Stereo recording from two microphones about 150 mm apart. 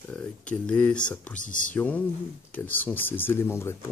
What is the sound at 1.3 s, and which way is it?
Speech, 60° left (ahead or behind).